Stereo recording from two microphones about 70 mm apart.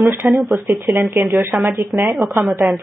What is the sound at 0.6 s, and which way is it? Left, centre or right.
Speech, right.